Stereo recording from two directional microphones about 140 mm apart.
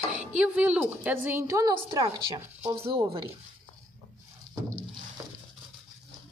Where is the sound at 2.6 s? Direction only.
45° right (ahead or behind).